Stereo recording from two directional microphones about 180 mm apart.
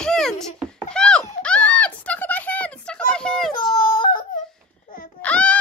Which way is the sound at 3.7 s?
50° left (ahead or behind).